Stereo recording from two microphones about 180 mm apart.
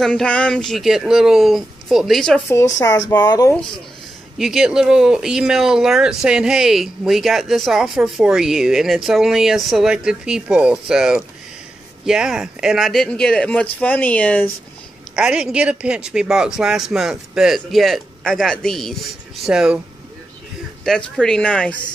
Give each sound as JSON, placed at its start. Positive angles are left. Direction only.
{"t": 0.0, "sound": "speech", "side_deg": 5}
{"t": 2.4, "sound": "speech", "side_deg": 15}
{"t": 4.4, "sound": "speech", "side_deg": 0}
{"t": 15.1, "sound": "speech", "side_deg": -5}
{"t": 20.8, "sound": "speech", "side_deg": 5}